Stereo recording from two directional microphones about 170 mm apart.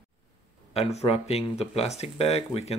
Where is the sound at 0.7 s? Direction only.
40° left (ahead or behind).